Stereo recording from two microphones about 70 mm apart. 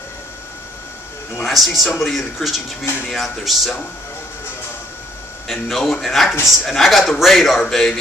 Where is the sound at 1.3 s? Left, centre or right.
Centre.